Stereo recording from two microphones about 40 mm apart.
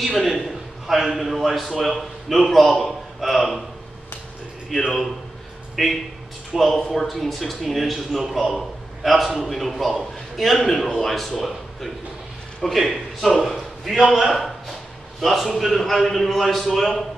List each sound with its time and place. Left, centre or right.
0.0 s a man's voice: centre
4.6 s a man's voice: centre